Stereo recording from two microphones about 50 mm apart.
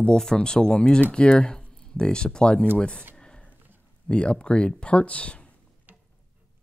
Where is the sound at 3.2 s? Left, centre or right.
Centre.